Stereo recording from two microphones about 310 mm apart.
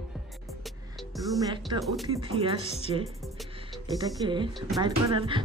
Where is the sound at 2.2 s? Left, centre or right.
Centre.